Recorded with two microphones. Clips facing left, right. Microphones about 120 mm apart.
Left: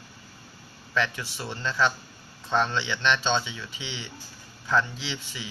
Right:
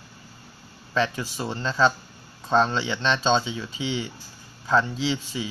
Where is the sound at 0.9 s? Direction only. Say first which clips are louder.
Right 3 dB; 30° right (ahead or behind).